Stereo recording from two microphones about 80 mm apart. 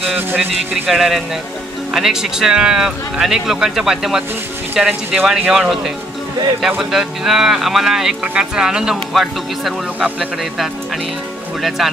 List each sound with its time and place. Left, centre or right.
0.8 s speech: centre
6.8 s speech: centre